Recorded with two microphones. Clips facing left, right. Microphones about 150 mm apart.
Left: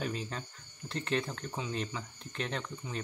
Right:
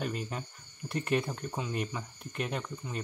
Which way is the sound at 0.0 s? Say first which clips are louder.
Right 1 dB; 5° right (ahead or behind).